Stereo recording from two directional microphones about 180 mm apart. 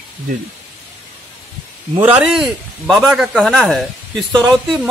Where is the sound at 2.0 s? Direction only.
10° right (ahead or behind).